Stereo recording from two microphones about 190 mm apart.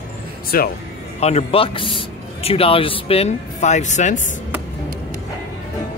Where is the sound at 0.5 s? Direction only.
50° left (ahead or behind).